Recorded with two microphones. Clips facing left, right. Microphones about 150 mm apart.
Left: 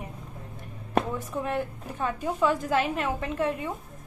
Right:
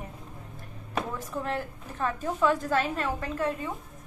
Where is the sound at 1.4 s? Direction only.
15° left (ahead or behind).